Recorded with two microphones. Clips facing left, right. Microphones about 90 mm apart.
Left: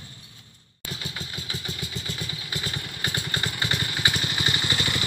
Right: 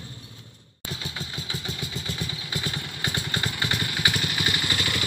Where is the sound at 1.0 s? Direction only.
10° right (ahead or behind).